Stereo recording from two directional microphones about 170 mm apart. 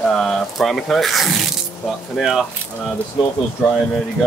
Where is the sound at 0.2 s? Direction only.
Centre (ahead or behind).